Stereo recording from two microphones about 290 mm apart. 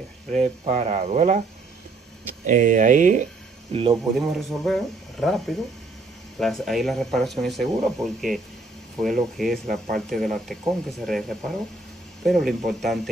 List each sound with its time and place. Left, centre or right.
0.3 s speech: right
2.4 s speech: right
4.2 s speech: centre
9.4 s speech: centre